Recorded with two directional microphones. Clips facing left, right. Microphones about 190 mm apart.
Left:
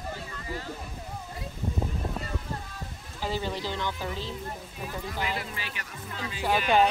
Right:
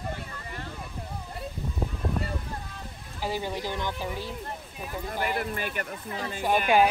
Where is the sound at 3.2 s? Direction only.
15° right (ahead or behind).